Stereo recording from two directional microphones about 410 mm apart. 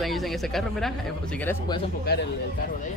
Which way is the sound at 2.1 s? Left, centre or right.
Left.